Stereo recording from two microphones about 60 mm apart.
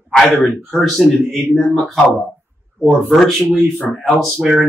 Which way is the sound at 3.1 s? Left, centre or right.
Centre.